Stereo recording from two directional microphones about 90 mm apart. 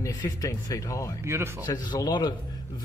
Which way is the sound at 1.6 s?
50° left (ahead or behind).